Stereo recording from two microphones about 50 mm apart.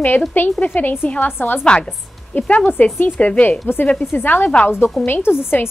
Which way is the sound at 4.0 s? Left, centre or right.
Left.